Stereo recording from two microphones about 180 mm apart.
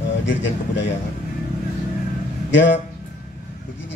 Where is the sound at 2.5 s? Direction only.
90° left.